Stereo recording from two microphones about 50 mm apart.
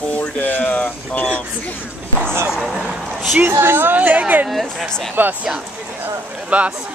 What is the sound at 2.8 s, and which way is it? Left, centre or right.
Speech, centre.